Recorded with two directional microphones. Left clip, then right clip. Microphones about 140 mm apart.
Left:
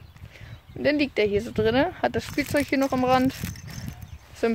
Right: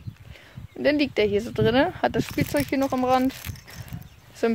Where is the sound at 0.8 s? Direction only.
25° right (ahead or behind).